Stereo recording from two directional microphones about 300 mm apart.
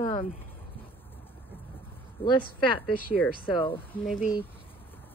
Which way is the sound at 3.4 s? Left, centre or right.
Centre.